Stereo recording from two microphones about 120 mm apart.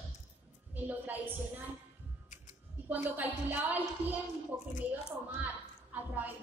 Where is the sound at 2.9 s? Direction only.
15° right (ahead or behind).